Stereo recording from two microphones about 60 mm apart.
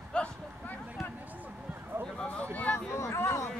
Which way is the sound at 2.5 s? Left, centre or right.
Left.